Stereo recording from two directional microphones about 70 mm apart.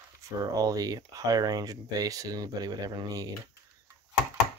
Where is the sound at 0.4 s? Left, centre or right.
Right.